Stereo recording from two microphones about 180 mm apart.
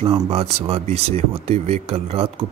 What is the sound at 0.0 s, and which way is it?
Speech, 35° right (ahead or behind).